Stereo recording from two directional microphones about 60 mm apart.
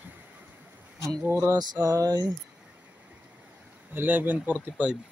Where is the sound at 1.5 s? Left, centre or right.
Right.